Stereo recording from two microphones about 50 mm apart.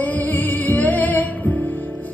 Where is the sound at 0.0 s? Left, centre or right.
Left.